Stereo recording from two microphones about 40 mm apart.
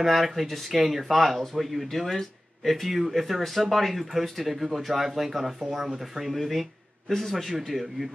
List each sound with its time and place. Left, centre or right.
0.0 s a man's voice: centre